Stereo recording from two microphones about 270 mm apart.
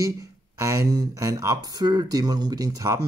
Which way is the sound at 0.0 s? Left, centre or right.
Centre.